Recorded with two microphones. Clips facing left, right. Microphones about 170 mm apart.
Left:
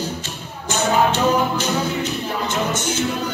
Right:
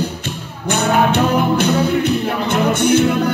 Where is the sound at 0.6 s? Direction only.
60° right (ahead or behind).